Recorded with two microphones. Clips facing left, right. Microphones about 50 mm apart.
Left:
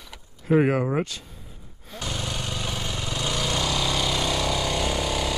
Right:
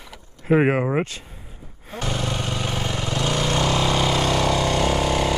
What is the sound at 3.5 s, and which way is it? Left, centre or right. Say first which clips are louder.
Vehicle: right 6 dB; right.